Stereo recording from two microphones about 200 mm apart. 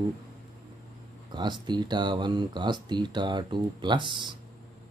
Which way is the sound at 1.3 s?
20° right (ahead or behind).